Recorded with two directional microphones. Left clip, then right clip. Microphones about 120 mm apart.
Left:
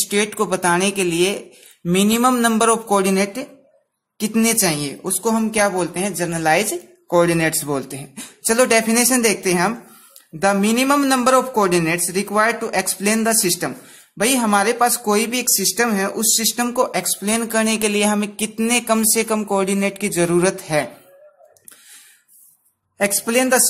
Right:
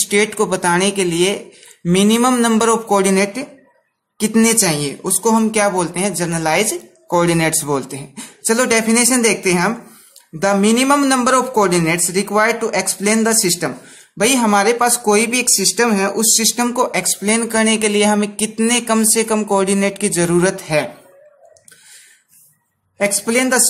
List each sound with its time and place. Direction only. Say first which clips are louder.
0.0 s speech: right 4 dB; 15° left (ahead or behind)
22.9 s speech: right 2 dB; 30° left (ahead or behind)